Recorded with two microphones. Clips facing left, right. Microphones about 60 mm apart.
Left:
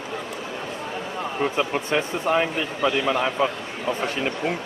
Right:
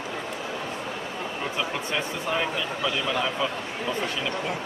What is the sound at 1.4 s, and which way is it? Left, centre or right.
A man's voice, left.